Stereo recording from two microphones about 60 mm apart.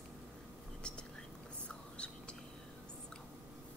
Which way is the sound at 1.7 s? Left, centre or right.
Centre.